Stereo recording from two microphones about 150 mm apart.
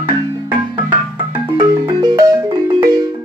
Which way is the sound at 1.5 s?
25° right (ahead or behind).